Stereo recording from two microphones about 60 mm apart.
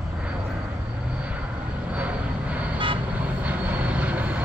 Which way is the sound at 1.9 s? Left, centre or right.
Right.